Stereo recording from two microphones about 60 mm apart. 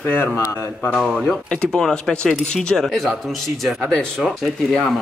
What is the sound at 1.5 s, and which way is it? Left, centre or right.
Speech, centre.